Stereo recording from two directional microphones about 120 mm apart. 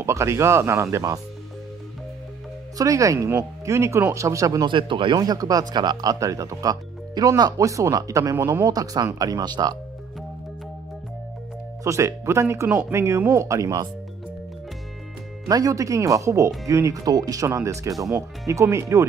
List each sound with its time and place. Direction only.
0.0 s speech: 25° right (ahead or behind)
2.8 s speech: 30° right (ahead or behind)
4.6 s speech: 45° right (ahead or behind)
11.8 s speech: 25° right (ahead or behind)
15.4 s speech: 30° right (ahead or behind)